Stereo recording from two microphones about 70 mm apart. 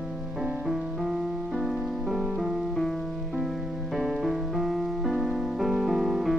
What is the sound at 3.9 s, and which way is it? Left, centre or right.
Music, centre.